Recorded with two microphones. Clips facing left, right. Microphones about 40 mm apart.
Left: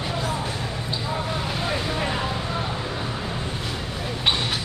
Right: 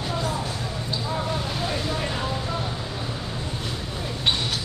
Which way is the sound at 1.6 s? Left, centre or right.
Centre.